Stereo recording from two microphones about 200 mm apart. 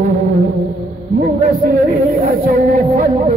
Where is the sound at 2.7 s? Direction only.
30° right (ahead or behind).